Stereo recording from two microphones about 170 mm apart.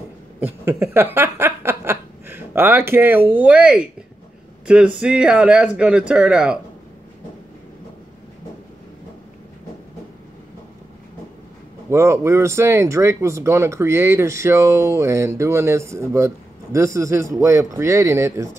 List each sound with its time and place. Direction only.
0.4 s speech: 15° right (ahead or behind)
11.9 s speech: 15° right (ahead or behind)